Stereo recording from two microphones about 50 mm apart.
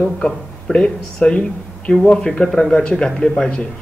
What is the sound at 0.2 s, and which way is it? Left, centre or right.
A man's voice, centre.